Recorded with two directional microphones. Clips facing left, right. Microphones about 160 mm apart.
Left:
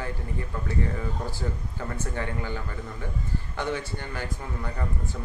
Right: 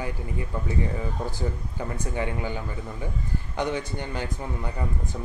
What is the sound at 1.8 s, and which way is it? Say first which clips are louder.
A man's voice: right 3 dB; 15° right (ahead or behind).